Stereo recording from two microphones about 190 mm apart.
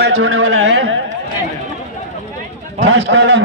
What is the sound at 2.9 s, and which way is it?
Speech, 75° right (ahead or behind).